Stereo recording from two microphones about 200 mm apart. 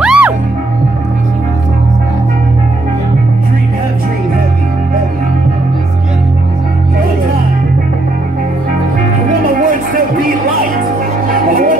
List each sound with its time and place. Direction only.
0.0 s music: 5° right (ahead or behind)
9.3 s music: 45° right (ahead or behind)
11.3 s music: 45° right (ahead or behind)